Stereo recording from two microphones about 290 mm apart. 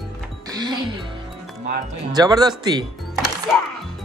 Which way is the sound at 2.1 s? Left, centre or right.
Centre.